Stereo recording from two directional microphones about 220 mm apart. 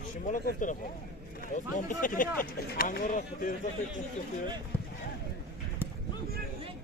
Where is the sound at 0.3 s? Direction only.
35° left (ahead or behind).